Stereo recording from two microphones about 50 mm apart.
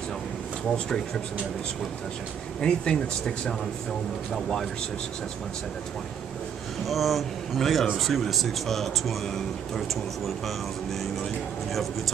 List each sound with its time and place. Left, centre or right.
0.7 s speech: centre
2.6 s speech: centre
6.9 s speech: centre